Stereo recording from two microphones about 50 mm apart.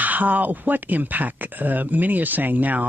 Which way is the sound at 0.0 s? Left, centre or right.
Right.